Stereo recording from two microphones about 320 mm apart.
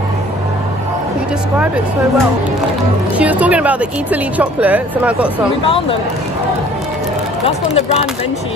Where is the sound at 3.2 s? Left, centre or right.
Centre.